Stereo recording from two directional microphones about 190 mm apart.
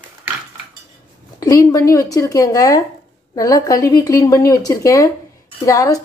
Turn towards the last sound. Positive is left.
turn(degrees=20)  # may be behind; listen again after turning